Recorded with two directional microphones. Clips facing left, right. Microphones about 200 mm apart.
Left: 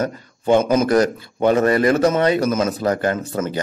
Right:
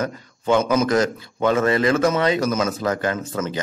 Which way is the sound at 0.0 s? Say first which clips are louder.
Left 3 dB; 30° left (ahead or behind).